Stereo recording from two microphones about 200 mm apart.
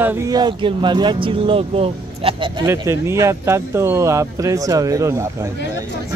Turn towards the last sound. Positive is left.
turn(degrees=-15)  # may be behind; listen again after turning